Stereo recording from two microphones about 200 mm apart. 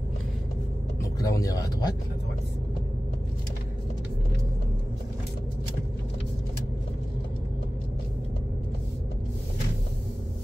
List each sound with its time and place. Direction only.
1.2 s speech: 15° left (ahead or behind)